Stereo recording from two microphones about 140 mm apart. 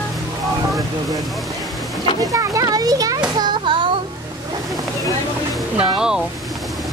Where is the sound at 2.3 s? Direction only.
25° right (ahead or behind).